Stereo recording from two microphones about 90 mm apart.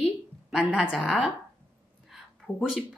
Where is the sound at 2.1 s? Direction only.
5° right (ahead or behind).